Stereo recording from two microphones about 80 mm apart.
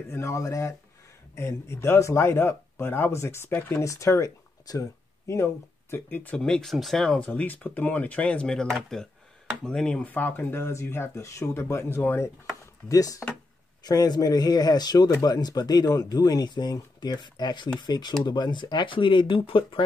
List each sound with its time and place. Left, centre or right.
0.1 s speech: left
6.0 s speech: centre
9.7 s speech: centre
10.0 s speech: left
12.8 s speech: left
13.8 s speech: left